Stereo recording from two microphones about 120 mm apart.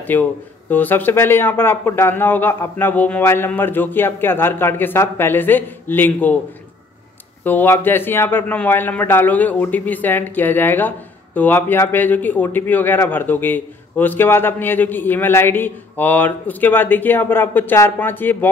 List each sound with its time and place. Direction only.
0.0 s a man's voice: 15° left (ahead or behind)
7.4 s a man's voice: 15° left (ahead or behind)